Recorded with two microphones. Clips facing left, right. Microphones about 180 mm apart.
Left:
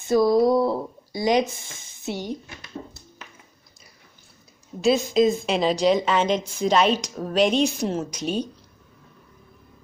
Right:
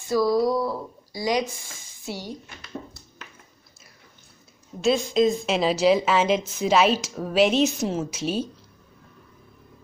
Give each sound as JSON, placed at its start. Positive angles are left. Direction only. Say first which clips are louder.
{"t": 0.1, "sound": "speech", "louder": "left 3 dB", "side_deg": 20}
{"t": 4.8, "sound": "a woman's voice", "louder": "left 1 dB", "side_deg": 0}